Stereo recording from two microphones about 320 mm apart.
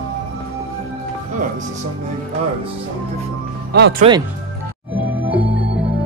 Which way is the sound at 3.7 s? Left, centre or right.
Right.